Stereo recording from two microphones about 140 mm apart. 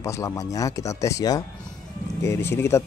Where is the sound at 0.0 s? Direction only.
20° left (ahead or behind).